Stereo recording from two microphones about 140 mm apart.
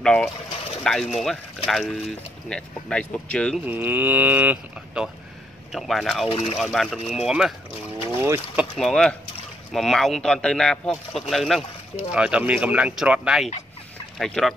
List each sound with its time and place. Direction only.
0.0 s speech: 5° left (ahead or behind)
3.5 s speech: 15° right (ahead or behind)
6.2 s speech: 45° left (ahead or behind)
6.5 s speech: centre (ahead or behind)
8.2 s speech: 15° right (ahead or behind)
8.7 s speech: 5° left (ahead or behind)